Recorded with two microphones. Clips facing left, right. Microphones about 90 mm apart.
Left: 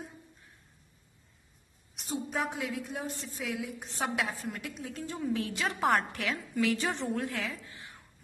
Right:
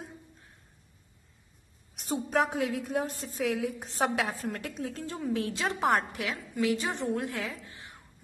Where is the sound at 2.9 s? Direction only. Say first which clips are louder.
Right 6 dB; 40° right (ahead or behind).